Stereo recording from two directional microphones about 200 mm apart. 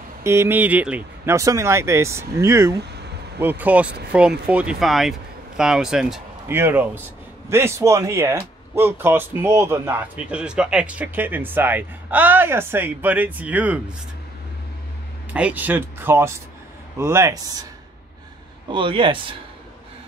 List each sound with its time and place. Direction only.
0.2 s speech: 15° right (ahead or behind)
2.8 s a sound: 55° right (ahead or behind)
3.3 s speech: 10° right (ahead or behind)
15.3 s speech: 5° right (ahead or behind)
18.7 s a man's voice: 25° right (ahead or behind)